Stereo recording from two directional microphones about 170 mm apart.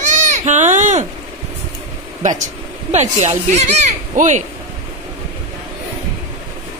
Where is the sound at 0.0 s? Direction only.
45° right (ahead or behind).